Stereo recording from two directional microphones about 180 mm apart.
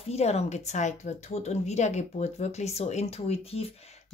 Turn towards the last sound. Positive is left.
turn(degrees=35)  # may be behind; listen again after turning